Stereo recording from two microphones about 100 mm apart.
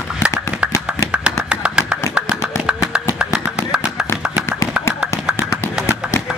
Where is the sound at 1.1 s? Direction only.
10° right (ahead or behind).